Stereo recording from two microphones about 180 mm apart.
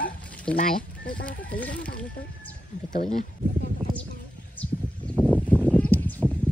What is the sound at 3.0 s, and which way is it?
Speech, 45° left (ahead or behind).